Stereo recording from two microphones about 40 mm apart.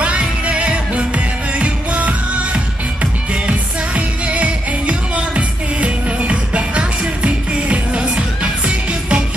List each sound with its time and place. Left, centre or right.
0.0 s music: right